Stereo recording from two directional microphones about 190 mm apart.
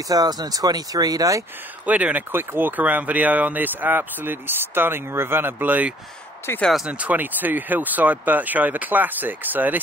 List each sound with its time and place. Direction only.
0.1 s speech: 20° right (ahead or behind)
1.9 s speech: 10° right (ahead or behind)
6.4 s speech: 10° left (ahead or behind)
6.7 s speech: 5° right (ahead or behind)